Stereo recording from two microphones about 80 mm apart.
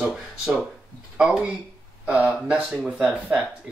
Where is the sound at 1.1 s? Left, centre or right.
Centre.